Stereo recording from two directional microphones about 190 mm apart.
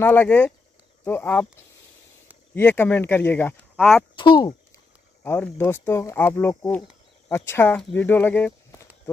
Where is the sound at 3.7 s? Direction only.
Centre (ahead or behind).